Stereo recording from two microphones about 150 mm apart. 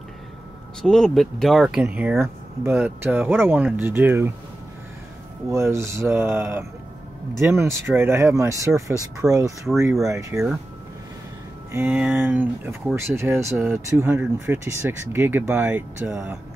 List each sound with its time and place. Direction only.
0.8 s speech: 5° left (ahead or behind); by 4.3 s 15° right (ahead or behind)
5.5 s speech: 20° right (ahead or behind)
11.7 s speech: 15° right (ahead or behind)